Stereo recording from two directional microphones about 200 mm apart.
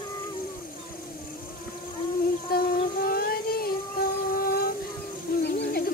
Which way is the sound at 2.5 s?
45° left (ahead or behind).